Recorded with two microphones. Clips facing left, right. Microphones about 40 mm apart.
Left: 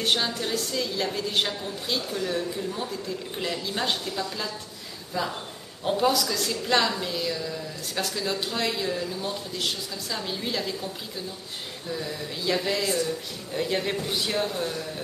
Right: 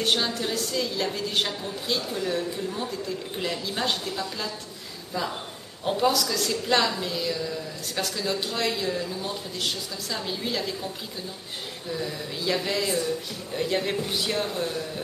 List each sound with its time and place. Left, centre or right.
0.0 s a woman's voice: centre
5.9 s a woman's voice: centre
11.9 s a woman's voice: centre